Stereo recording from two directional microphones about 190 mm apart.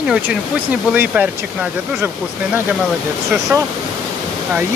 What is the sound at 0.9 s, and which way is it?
Speech, 10° right (ahead or behind).